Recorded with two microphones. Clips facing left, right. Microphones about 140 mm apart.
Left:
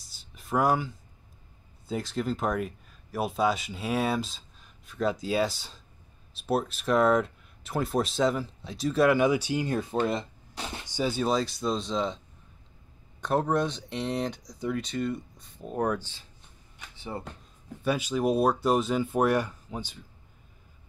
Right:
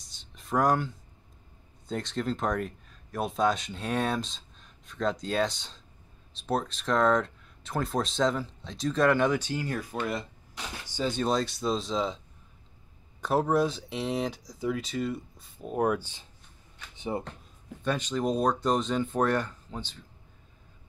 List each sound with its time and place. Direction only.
0.0 s a sound: 5° left (ahead or behind)
1.9 s speech: 5° left (ahead or behind); by 10.7 s 30° left (ahead or behind)
10.9 s speech: 10° left (ahead or behind)
13.2 s speech: centre (ahead or behind)
16.9 s a sound: 20° right (ahead or behind)
17.8 s speech: 10° left (ahead or behind)